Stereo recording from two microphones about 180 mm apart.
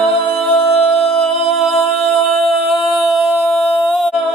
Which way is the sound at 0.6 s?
35° left (ahead or behind).